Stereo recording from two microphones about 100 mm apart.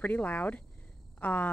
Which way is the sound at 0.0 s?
15° left (ahead or behind).